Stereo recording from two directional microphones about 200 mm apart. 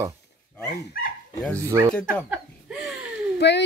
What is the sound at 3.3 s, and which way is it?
Speech, 60° left (ahead or behind).